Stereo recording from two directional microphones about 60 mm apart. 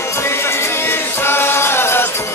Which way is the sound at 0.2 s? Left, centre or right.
Left.